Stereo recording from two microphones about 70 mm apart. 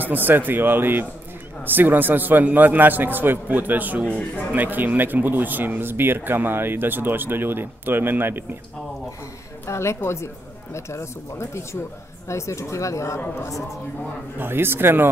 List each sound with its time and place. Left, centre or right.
0.0 s a man's voice: right
9.7 s speech: left
14.4 s speech: right